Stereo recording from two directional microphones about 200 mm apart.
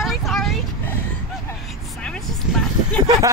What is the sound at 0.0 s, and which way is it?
Vehicle, centre (ahead or behind).